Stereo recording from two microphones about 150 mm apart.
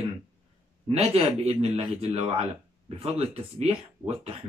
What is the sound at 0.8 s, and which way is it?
Speech, 45° right (ahead or behind).